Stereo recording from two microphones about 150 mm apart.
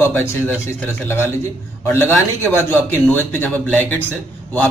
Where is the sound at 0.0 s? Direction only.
15° left (ahead or behind).